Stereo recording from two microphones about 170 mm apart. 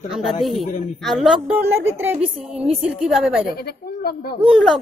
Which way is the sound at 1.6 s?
10° right (ahead or behind).